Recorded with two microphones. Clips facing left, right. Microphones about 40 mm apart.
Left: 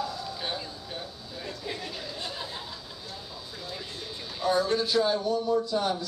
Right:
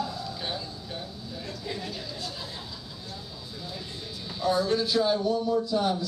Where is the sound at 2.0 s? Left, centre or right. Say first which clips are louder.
Left 1 dB; left.